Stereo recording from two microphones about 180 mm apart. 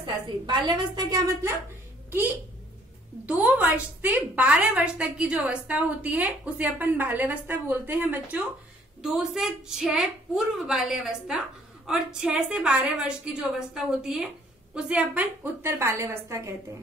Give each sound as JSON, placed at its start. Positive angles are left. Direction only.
{"t": 0.0, "sound": "a woman's voice", "side_deg": -25}
{"t": 2.0, "sound": "a woman's voice", "side_deg": -10}